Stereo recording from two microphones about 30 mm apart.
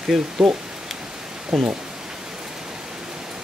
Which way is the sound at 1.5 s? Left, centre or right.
Centre.